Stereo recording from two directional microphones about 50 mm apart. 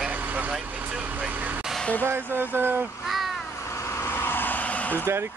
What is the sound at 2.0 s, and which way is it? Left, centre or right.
Speech, right.